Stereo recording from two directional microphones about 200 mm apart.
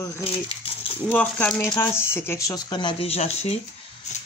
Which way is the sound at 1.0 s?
5° left (ahead or behind).